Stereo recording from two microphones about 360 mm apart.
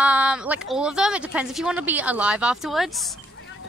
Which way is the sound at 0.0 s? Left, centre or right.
Centre.